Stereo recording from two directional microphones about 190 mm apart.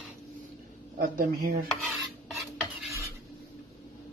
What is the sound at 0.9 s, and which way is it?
Speech, 50° right (ahead or behind).